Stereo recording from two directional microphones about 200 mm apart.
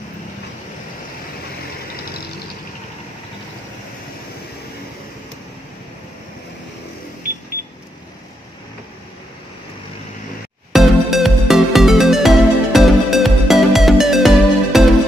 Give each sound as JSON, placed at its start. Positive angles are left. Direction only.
{"t": 10.7, "sound": "music", "side_deg": 0}